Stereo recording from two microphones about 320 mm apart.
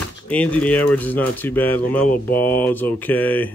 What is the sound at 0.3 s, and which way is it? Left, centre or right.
A man's voice, centre.